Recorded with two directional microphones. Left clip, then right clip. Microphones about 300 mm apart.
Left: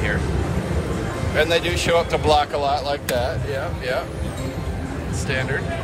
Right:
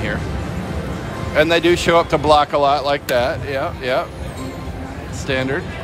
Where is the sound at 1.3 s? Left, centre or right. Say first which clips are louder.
Right 5 dB; centre.